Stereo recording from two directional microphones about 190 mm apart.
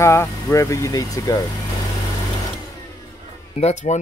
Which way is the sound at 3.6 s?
30° left (ahead or behind).